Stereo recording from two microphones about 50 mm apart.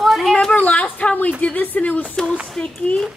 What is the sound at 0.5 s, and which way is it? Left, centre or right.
Speech, left.